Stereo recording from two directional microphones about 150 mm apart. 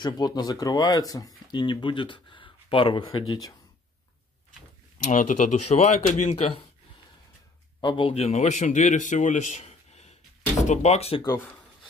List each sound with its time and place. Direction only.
0.0 s speech: 25° left (ahead or behind)
4.9 s speech: 60° left (ahead or behind)
7.8 s a man's voice: 35° left (ahead or behind)
11.2 s speech: 20° left (ahead or behind)